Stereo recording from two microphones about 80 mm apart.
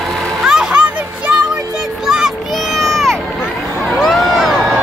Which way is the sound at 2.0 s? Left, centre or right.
Centre.